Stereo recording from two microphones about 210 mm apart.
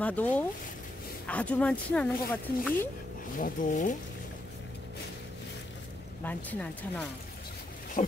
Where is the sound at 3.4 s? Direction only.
35° left (ahead or behind).